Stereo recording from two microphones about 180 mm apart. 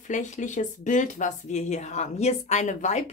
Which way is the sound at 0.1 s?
40° left (ahead or behind).